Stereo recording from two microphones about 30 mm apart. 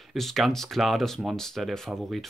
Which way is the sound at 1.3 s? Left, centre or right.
Centre.